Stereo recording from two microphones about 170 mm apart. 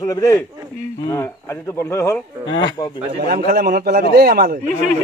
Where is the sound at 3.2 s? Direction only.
60° right (ahead or behind).